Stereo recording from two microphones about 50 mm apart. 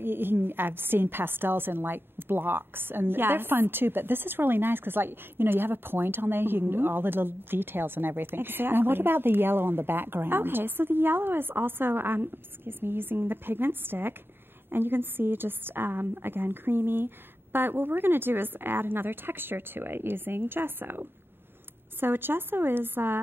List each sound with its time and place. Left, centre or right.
0.0 s a woman's voice: right